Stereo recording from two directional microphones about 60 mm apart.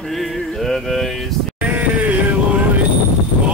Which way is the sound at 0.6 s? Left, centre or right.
Centre.